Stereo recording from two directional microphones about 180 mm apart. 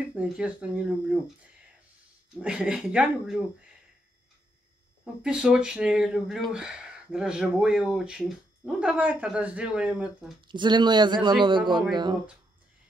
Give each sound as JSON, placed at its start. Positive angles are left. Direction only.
{"t": 0.1, "sound": "speech", "side_deg": -5}
{"t": 5.0, "sound": "speech", "side_deg": -5}
{"t": 10.5, "sound": "speech", "side_deg": -25}